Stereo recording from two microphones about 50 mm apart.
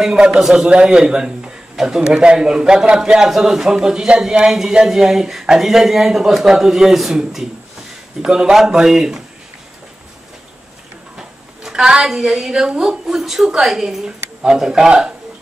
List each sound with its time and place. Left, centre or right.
0.0 s a man's voice: centre
11.1 s a sound: centre
12.0 s a man's voice: centre